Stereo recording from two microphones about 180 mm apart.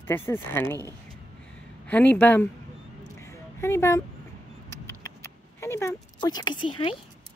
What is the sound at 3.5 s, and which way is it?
Speech, 15° left (ahead or behind).